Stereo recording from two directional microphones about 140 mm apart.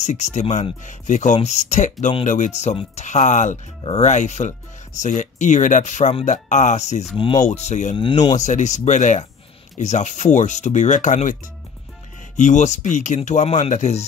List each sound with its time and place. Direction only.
0.0 s speech: 55° left (ahead or behind)
7.2 s speech: 40° left (ahead or behind)
7.4 s speech: 55° left (ahead or behind)
12.4 s speech: 60° left (ahead or behind)